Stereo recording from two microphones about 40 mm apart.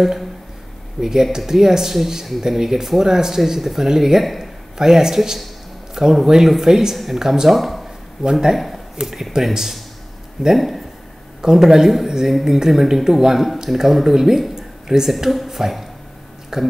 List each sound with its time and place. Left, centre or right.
1.0 s speech: centre
7.5 s speech: centre
8.2 s speech: centre
11.4 s a woman's voice: centre
14.5 s a sound: centre
15.3 s speech: centre